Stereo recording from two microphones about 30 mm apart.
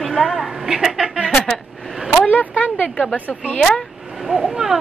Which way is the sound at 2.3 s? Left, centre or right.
Left.